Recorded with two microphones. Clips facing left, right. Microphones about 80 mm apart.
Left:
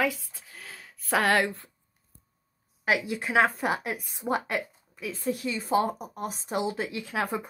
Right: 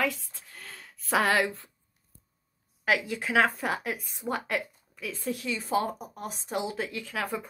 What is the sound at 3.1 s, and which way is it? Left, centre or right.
A woman's voice, centre.